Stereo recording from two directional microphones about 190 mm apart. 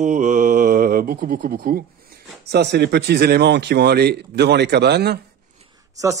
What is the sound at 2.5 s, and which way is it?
Speech, 65° right (ahead or behind).